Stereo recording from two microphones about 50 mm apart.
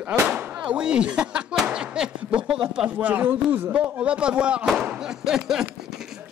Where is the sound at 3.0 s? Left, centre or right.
Right; by 5.7 s centre.